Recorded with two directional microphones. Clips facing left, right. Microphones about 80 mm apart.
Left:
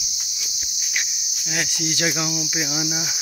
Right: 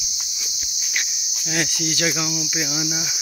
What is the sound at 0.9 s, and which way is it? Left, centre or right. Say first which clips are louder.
Insect: even; centre.